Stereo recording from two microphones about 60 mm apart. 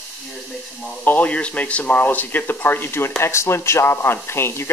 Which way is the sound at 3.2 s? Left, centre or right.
Left.